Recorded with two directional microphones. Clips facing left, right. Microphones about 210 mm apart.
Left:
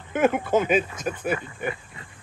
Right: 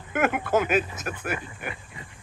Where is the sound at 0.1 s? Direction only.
10° right (ahead or behind).